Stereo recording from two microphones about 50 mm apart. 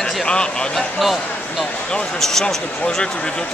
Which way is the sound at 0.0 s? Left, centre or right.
Centre.